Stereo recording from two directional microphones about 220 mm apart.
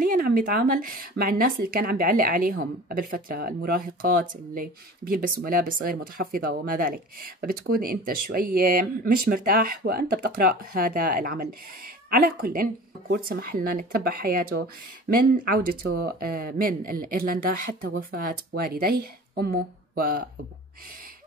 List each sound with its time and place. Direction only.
0.0 s speech: 40° right (ahead or behind)